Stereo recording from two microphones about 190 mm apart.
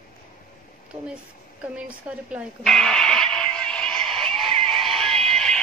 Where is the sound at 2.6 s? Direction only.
Centre (ahead or behind).